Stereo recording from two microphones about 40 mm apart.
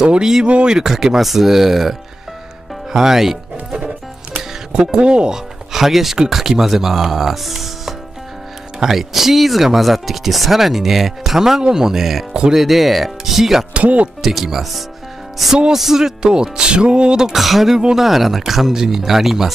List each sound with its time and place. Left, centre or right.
0.0 s speech: right
0.8 s speech: centre
2.9 s music: centre
4.9 s speech: right
5.7 s speech: centre
13.7 s speech: right
14.2 s speech: centre
17.3 s speech: centre